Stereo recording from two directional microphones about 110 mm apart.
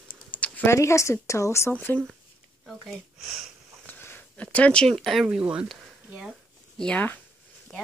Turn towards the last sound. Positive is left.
turn(degrees=10)  # may be behind; listen again after turning